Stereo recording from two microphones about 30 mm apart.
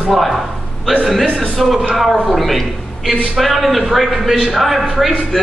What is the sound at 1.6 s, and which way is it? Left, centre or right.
A man's voice, centre.